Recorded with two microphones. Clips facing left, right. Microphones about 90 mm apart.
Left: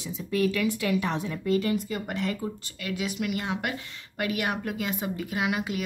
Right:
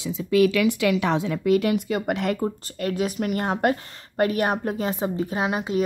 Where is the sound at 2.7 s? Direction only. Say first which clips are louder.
Right 6 dB; 45° right (ahead or behind).